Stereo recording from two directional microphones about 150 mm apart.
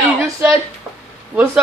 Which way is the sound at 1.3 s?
10° right (ahead or behind).